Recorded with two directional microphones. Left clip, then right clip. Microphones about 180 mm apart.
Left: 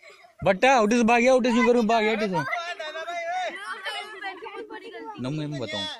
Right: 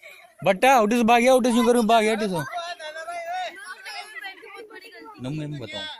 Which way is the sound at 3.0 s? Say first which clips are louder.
Left 1 dB; 35° left (ahead or behind).